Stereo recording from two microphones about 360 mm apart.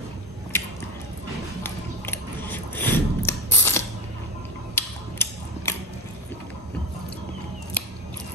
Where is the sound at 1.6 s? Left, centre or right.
Centre.